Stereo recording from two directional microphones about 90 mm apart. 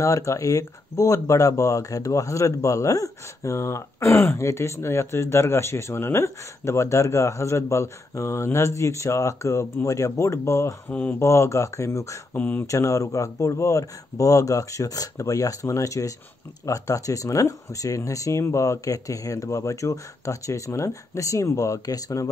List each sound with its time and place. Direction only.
0.0 s speech: 35° left (ahead or behind)
10.9 s speech: 20° left (ahead or behind)
11.1 s speech: 35° left (ahead or behind)
12.4 s speech: 20° left (ahead or behind)
12.6 s speech: 35° left (ahead or behind)